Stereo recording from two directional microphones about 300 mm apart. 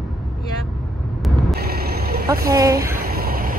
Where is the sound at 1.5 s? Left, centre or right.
Right.